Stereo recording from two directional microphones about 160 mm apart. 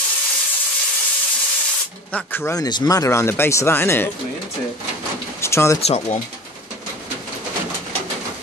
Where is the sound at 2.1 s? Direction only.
15° left (ahead or behind).